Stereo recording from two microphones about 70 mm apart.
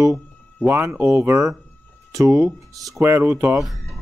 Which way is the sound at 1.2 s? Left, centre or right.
Right.